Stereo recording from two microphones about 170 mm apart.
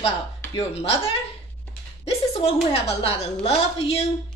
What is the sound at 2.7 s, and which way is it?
A woman's voice, 35° left (ahead or behind).